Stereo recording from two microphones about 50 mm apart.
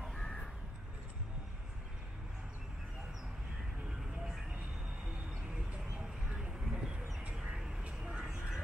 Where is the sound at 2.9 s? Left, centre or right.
Centre.